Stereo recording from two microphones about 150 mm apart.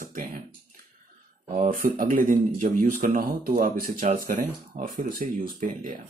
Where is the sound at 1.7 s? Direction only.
65° right (ahead or behind).